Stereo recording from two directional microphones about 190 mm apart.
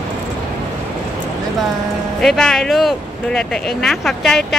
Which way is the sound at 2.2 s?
Centre (ahead or behind).